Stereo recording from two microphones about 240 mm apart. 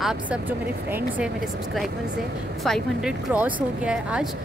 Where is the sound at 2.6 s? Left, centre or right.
Centre.